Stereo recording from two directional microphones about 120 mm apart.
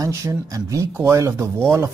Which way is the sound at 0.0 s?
25° right (ahead or behind).